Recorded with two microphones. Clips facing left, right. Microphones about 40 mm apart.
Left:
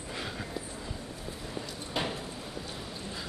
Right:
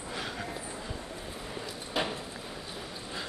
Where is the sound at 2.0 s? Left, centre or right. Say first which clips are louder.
Right 1 dB; centre.